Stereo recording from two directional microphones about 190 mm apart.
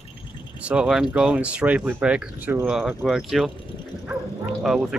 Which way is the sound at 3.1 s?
Centre (ahead or behind).